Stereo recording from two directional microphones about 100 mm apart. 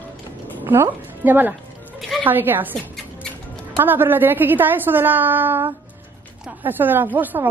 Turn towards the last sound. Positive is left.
turn(degrees=-20)  # may be behind; listen again after turning